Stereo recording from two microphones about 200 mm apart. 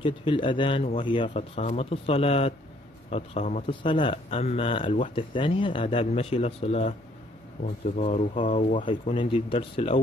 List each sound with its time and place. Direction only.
0.0 s speech: 25° left (ahead or behind)
8.8 s speech: 25° left (ahead or behind)